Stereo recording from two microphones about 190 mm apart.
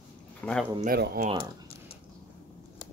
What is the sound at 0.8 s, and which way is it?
Speech, 55° right (ahead or behind).